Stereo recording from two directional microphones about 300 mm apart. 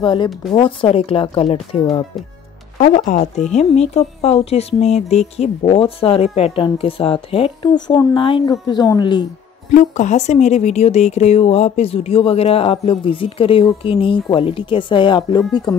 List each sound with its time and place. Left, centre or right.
0.0 s a woman's voice: centre
0.3 s a woman's voice: centre
0.6 s a woman's voice: centre